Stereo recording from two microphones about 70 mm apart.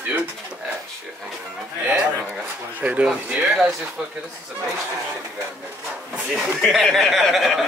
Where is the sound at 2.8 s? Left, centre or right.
Centre.